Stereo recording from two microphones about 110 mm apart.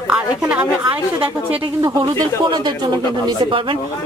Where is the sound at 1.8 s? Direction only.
40° right (ahead or behind).